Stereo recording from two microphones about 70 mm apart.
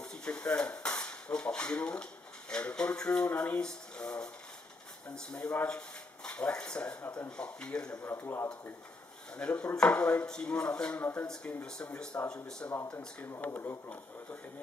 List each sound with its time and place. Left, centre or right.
0.0 s a sound: centre
2.5 s chopping: centre
3.3 s speech: left
3.6 s a sound: centre
5.1 s chopping: centre
5.7 s speech: centre
7.2 s chopping: centre
8.2 s speech: left
9.4 s chopping: centre
11.0 s speech: left
11.2 s chopping: centre
13.4 s speech: left